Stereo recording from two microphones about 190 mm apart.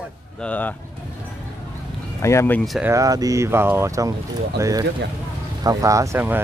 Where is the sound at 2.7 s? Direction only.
15° right (ahead or behind).